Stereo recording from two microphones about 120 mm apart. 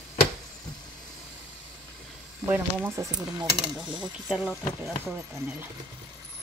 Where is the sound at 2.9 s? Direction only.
25° right (ahead or behind).